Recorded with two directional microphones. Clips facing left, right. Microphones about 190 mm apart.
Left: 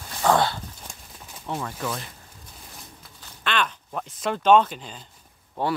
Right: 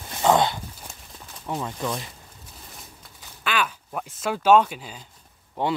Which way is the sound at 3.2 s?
5° right (ahead or behind).